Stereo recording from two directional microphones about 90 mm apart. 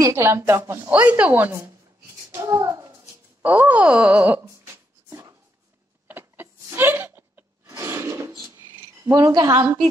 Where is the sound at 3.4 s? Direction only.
20° right (ahead or behind).